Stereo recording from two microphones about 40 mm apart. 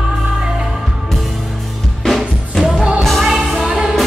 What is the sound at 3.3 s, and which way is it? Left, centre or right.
Music, centre.